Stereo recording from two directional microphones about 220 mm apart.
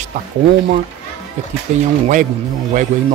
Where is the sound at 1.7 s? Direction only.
35° right (ahead or behind).